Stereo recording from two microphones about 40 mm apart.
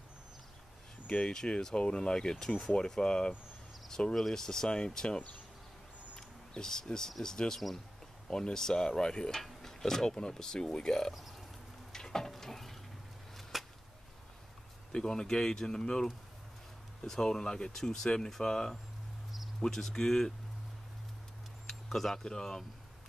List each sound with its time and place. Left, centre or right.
1.0 s speech: left
9.6 s a sound: centre
10.1 s speech: centre
11.9 s a sound: centre
14.9 s speech: centre
21.8 s speech: centre